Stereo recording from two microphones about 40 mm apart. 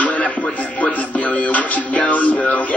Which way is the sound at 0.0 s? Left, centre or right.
Left.